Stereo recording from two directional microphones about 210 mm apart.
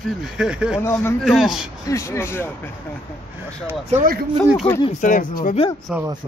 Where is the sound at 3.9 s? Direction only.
40° right (ahead or behind).